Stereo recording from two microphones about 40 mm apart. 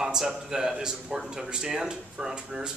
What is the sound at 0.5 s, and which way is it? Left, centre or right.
Speech, centre.